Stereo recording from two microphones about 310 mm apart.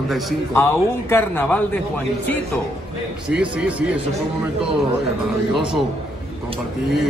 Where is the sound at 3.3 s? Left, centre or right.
Centre.